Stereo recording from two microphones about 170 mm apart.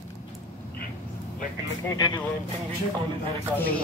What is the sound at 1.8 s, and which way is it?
Speech, 25° left (ahead or behind).